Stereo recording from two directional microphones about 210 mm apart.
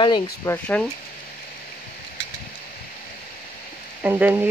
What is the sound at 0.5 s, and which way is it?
Speech, 5° left (ahead or behind).